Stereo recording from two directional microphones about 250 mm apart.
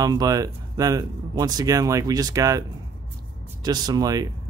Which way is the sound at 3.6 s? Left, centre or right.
Centre.